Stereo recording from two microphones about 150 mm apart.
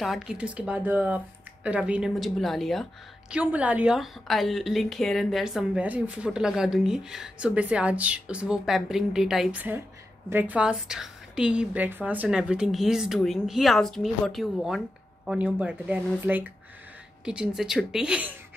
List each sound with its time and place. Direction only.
0.0 s speech: 5° right (ahead or behind)